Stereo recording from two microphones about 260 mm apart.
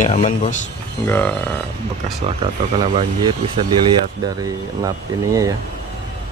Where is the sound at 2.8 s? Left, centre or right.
Centre.